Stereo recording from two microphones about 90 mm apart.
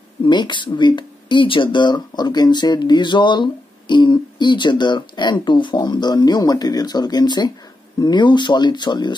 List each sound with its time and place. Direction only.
0.2 s speech: 60° left (ahead or behind)